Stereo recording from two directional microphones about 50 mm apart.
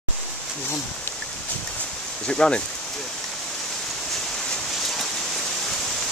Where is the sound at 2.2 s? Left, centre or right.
Centre.